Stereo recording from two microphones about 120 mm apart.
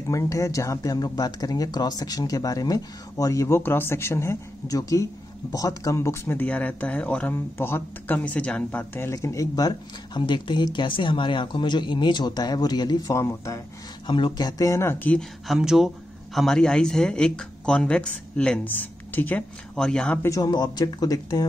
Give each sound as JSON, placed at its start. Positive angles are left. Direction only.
{"t": 0.1, "sound": "speech", "side_deg": 25}
{"t": 14.0, "sound": "speech", "side_deg": 40}
{"t": 15.1, "sound": "speech", "side_deg": 0}
{"t": 20.2, "sound": "speech", "side_deg": 30}